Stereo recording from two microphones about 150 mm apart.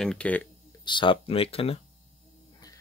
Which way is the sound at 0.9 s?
35° left (ahead or behind).